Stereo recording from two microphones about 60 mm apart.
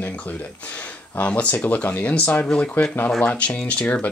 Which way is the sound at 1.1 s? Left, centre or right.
Left.